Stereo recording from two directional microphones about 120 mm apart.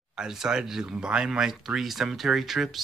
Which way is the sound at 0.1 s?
5° right (ahead or behind).